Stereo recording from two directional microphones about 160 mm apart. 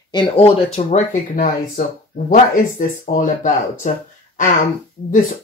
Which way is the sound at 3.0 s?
55° left (ahead or behind).